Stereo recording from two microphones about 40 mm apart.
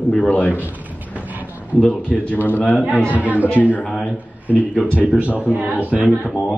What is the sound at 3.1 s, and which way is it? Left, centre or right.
Speech, right.